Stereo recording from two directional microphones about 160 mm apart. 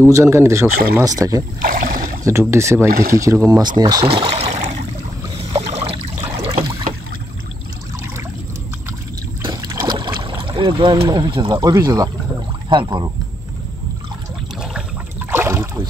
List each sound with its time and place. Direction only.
0.1 s speech: 15° right (ahead or behind)
1.6 s speech: 60° right (ahead or behind)
2.2 s speech: 15° right (ahead or behind)
2.9 s speech: 65° right (ahead or behind)
3.2 s speech: 20° right (ahead or behind)
4.1 s a sound: 35° right (ahead or behind)
9.4 s boat: 25° right (ahead or behind)
12.6 s speech: 30° right (ahead or behind)
15.3 s a sound: 15° right (ahead or behind)